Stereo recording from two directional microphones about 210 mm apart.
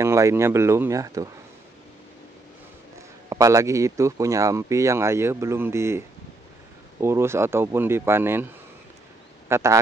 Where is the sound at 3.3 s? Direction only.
15° right (ahead or behind).